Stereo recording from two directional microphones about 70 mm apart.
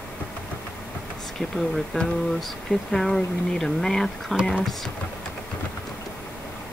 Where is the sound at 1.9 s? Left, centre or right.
Centre.